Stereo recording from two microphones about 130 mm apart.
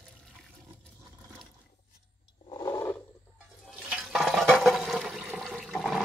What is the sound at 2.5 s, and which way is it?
Roar, 25° left (ahead or behind).